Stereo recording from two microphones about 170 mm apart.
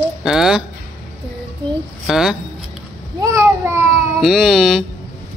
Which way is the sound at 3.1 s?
20° right (ahead or behind).